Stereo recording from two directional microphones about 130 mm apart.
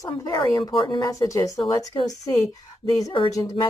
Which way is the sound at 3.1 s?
40° left (ahead or behind).